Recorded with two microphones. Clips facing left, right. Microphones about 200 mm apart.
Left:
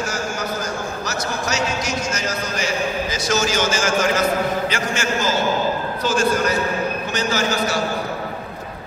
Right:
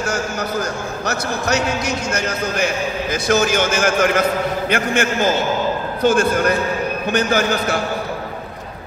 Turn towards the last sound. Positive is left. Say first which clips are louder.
# right 3 dB
turn(degrees=-55)  # may be behind; listen again after turning